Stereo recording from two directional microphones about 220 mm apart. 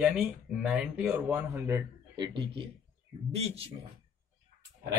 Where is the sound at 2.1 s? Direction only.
20° right (ahead or behind).